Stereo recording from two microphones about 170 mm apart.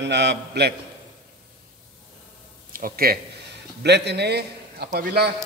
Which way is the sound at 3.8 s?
80° right.